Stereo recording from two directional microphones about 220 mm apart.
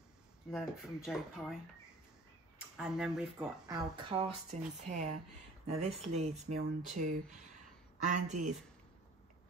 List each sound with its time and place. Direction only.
0.5 s speech: centre (ahead or behind)
2.8 s speech: 5° right (ahead or behind)
3.6 s speech: 20° right (ahead or behind)